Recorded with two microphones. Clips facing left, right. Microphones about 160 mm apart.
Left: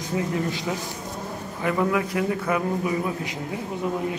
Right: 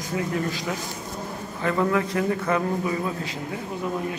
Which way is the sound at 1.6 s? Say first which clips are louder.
Even; 10° left (ahead or behind).